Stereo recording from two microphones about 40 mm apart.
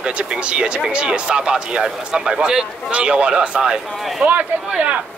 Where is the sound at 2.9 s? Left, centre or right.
Right.